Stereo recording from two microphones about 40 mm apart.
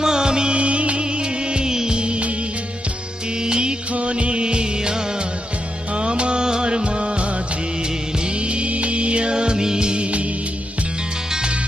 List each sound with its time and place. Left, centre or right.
0.0 s music: centre
3.4 s music: right
5.9 s music of bollywood: right
8.4 s music: right